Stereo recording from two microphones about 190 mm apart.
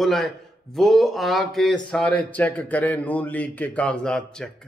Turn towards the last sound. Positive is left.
turn(degrees=5)  # may be behind; listen again after turning